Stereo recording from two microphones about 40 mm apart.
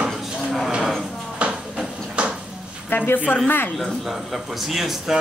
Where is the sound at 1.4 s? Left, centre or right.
Right.